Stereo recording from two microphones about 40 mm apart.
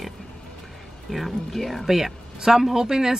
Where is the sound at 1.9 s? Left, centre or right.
Centre.